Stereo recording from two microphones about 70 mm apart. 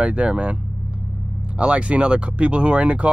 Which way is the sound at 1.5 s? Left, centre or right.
Centre.